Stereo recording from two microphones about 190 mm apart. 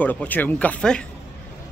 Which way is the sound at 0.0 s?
10° left (ahead or behind).